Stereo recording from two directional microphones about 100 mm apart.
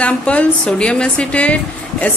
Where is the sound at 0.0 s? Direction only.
10° left (ahead or behind).